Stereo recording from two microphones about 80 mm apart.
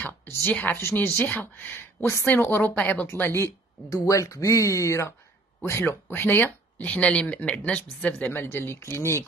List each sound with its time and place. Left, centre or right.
0.0 s a woman's voice: left
3.1 s speech: left
3.9 s speech: left